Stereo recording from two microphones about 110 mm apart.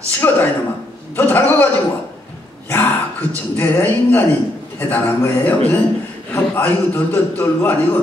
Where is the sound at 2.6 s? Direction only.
20° left (ahead or behind).